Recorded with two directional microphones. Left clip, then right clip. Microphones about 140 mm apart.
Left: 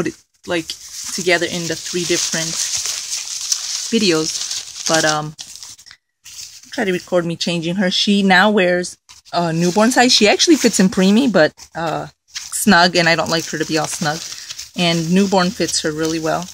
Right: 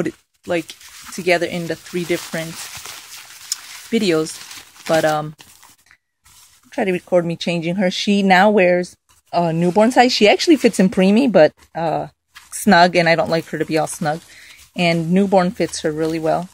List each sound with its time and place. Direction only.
0.0 s speech: 55° right (ahead or behind)
1.7 s a sound: 45° right (ahead or behind)
6.7 s speech: 45° right (ahead or behind)